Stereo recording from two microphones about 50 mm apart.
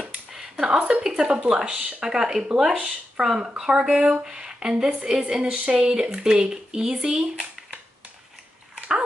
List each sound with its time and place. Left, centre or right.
0.0 s a sound: centre
0.7 s speech: centre
8.7 s dog: right